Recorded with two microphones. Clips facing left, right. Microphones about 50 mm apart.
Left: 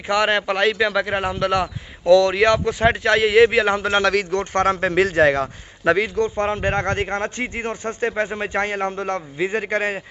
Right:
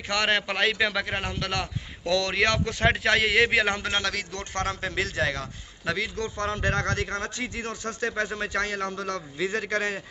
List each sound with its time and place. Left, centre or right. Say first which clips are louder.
0.1 s a man's voice: left 6 dB; centre
4.0 s a man's voice: left 11 dB; left
4.3 s a man's voice: left 11 dB; left